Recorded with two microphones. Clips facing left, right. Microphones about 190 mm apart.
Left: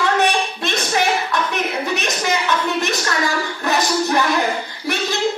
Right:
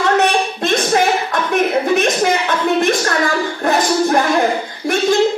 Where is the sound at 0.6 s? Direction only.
50° right (ahead or behind).